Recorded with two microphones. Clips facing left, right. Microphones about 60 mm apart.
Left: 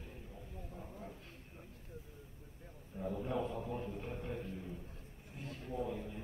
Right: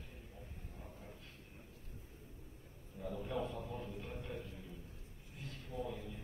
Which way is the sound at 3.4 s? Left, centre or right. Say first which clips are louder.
Left 4 dB; left.